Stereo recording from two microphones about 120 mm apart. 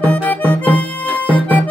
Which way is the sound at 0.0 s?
10° left (ahead or behind).